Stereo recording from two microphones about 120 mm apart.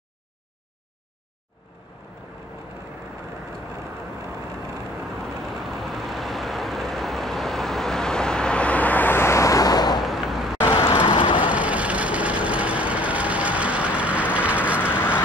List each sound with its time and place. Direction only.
5.7 s vehicle: centre (ahead or behind); by 10.0 s 35° left (ahead or behind)
10.0 s vehicle: centre (ahead or behind)
11.0 s vehicle: 40° left (ahead or behind)
11.4 s vehicle: 10° right (ahead or behind)
14.8 s vehicle: 20° left (ahead or behind)